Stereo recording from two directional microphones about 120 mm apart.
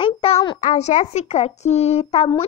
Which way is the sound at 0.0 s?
50° left (ahead or behind).